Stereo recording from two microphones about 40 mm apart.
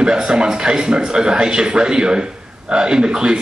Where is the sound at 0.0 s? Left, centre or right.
Centre.